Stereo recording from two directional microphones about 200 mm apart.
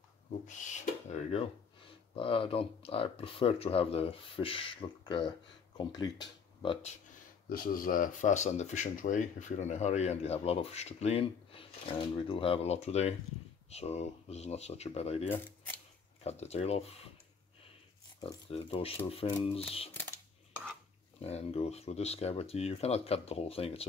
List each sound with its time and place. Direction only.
0.5 s speech: 35° left (ahead or behind)
7.4 s speech: 45° left (ahead or behind); by 15.2 s 30° left (ahead or behind)
15.2 s speech: 10° left (ahead or behind)
16.3 s speech: 30° left (ahead or behind)
18.2 s speech: 25° left (ahead or behind)
21.2 s speech: 30° left (ahead or behind)